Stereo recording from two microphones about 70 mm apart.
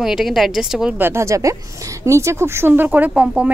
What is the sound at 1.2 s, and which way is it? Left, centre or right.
A woman's voice, right.